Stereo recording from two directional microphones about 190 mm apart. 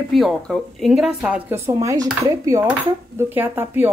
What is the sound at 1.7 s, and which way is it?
Dishes, 20° right (ahead or behind).